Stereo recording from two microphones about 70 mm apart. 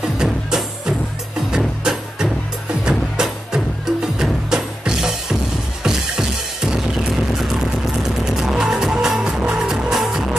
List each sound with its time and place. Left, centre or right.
0.2 s music: centre